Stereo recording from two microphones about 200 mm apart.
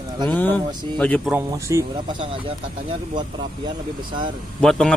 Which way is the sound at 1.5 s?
15° right (ahead or behind).